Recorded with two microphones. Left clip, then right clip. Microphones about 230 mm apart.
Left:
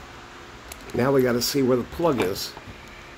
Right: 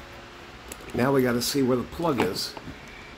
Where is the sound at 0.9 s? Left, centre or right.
Centre.